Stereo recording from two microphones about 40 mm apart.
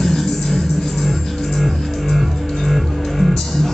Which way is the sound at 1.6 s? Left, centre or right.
Centre.